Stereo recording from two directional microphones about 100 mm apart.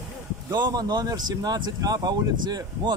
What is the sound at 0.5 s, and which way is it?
A man's voice, 40° right (ahead or behind).